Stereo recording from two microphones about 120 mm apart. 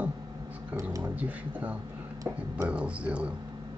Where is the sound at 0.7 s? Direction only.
25° right (ahead or behind).